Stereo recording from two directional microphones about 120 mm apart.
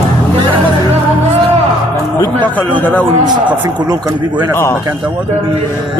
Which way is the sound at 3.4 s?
35° right (ahead or behind).